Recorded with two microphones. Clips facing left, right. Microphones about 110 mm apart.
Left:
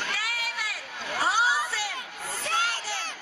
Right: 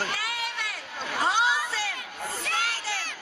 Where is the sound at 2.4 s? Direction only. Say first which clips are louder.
Left 3 dB; 20° left (ahead or behind).